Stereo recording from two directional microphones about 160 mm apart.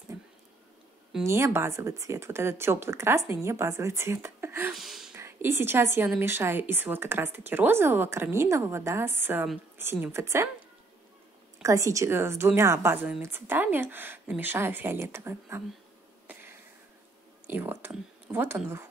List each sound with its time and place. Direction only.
1.2 s a woman's voice: 15° right (ahead or behind)
4.7 s a sound: centre (ahead or behind)
5.1 s a woman's voice: 15° right (ahead or behind)
11.6 s a woman's voice: 20° right (ahead or behind)
16.3 s a sound: 10° right (ahead or behind)
17.5 s speech: 15° right (ahead or behind)